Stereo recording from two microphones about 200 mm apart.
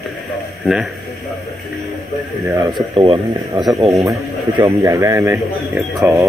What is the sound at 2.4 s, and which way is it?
Speech, 15° right (ahead or behind).